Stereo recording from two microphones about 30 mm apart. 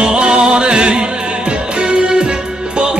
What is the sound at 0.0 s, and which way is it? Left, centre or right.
Music, right.